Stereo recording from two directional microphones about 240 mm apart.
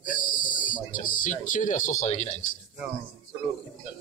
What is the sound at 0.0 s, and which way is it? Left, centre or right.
Speech, left.